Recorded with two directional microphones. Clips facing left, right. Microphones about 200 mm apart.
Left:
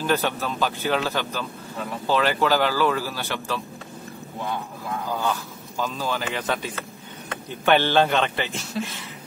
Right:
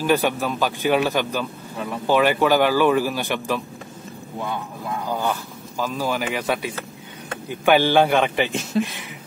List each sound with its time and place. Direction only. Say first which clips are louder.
0.0 s speech: right 4 dB; 10° right (ahead or behind)
5.1 s a man's voice: right 1 dB; 15° right (ahead or behind)